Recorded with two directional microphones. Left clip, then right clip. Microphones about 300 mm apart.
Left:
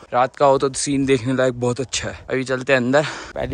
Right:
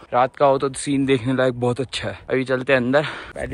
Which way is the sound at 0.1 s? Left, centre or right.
Centre.